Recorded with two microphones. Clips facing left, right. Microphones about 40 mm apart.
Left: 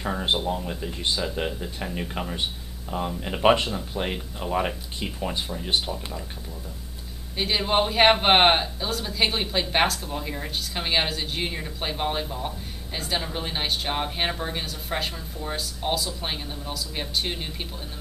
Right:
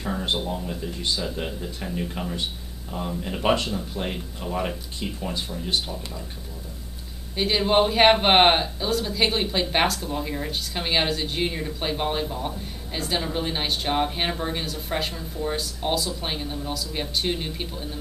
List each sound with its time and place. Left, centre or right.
0.4 s speech: centre
7.3 s speech: centre